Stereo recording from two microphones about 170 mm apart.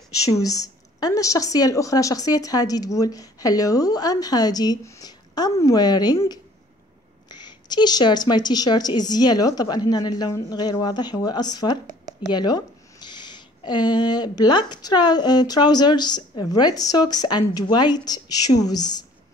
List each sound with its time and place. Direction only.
0.3 s speech: 20° left (ahead or behind)